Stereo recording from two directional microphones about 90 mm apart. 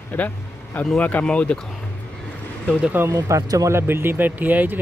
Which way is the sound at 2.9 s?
25° right (ahead or behind).